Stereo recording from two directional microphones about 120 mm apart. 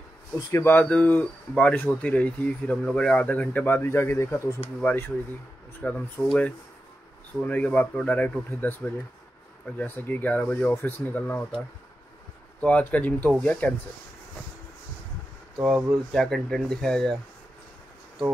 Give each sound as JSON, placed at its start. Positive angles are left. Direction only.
{"t": 0.5, "sound": "speech", "side_deg": 20}
{"t": 7.4, "sound": "speech", "side_deg": 10}
{"t": 12.5, "sound": "speech", "side_deg": 10}
{"t": 15.6, "sound": "speech", "side_deg": 0}